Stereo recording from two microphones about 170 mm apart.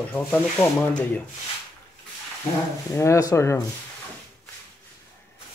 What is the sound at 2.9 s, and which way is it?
Speech, 15° left (ahead or behind).